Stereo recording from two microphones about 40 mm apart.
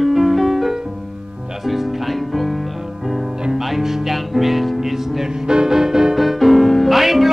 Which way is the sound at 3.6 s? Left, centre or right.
Centre.